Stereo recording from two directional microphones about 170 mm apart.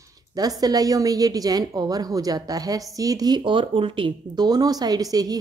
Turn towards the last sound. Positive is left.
turn(degrees=-20)  # may be behind; listen again after turning